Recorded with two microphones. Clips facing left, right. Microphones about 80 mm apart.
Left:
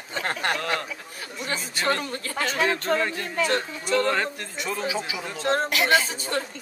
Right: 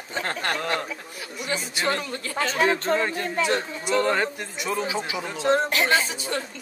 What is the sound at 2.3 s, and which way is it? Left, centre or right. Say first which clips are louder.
Speech: right 2 dB; right.